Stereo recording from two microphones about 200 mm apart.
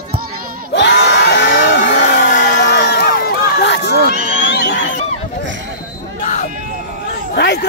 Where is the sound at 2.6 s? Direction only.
55° left (ahead or behind).